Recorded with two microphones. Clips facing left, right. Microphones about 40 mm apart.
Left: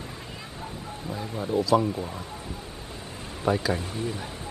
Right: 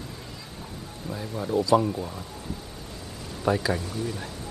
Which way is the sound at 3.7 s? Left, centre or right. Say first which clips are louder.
Even; left.